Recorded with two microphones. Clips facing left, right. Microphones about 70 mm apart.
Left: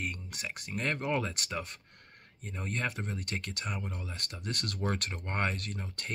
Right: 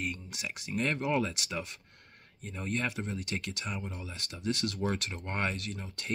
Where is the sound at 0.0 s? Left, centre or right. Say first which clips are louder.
Right 1 dB; left.